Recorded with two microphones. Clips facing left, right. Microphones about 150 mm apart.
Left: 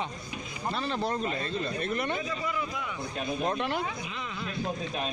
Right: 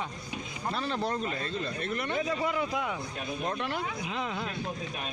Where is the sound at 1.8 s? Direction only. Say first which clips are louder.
Left 2 dB; 20° left (ahead or behind).